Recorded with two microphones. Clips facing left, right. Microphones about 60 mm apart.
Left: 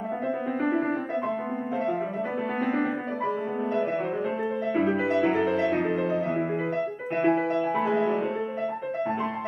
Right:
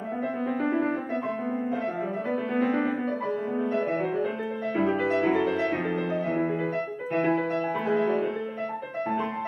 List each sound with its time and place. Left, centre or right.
0.7 s music: centre
2.6 s music: centre
4.7 s music: centre
7.2 s music: centre